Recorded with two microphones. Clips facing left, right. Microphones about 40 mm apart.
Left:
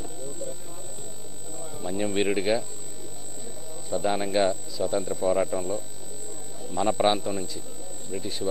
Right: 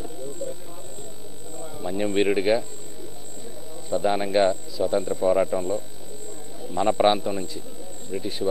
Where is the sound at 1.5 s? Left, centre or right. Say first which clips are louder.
Right 2 dB; centre.